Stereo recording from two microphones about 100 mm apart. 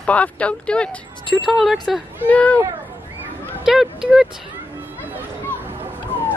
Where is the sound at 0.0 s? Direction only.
15° left (ahead or behind).